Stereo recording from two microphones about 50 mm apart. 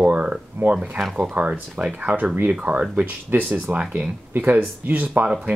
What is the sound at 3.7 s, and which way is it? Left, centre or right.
Speech, right.